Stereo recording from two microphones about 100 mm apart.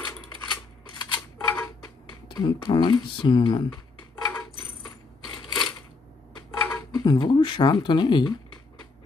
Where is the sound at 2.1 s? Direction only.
45° left (ahead or behind).